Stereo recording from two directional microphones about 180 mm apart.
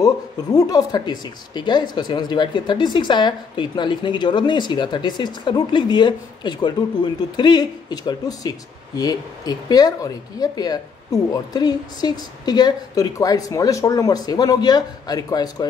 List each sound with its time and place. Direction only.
0.0 s speech: 20° left (ahead or behind)